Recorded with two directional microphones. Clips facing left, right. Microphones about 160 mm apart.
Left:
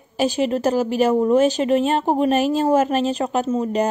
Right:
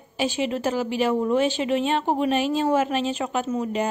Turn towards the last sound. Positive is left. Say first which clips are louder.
# left 5 dB
turn(degrees=35)  # may be behind; listen again after turning